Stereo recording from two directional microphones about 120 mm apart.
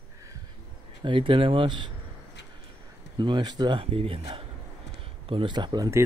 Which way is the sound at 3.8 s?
50° right (ahead or behind).